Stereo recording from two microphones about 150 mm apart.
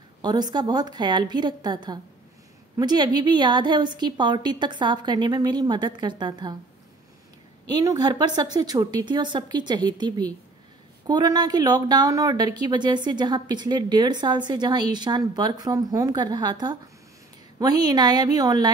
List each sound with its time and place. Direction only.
0.2 s speech: 25° right (ahead or behind)
7.6 s speech: 25° right (ahead or behind)